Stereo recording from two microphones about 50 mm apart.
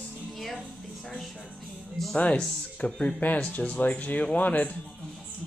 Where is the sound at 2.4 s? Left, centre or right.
Centre.